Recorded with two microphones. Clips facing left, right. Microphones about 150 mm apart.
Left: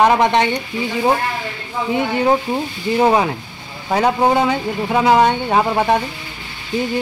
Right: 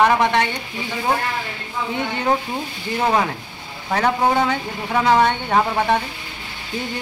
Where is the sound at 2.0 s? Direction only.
10° left (ahead or behind).